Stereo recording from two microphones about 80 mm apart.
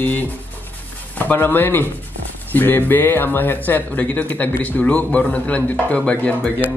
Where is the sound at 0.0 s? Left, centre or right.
Left.